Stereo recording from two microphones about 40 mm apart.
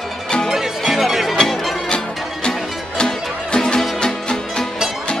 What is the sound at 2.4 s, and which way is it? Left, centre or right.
Music, left.